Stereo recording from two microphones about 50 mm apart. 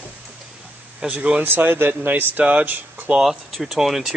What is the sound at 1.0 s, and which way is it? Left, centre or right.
Speech, right.